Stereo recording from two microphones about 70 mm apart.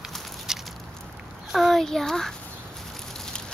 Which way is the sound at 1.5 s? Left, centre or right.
Centre.